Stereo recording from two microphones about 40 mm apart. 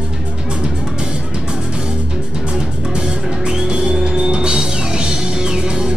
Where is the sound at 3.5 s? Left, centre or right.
Right.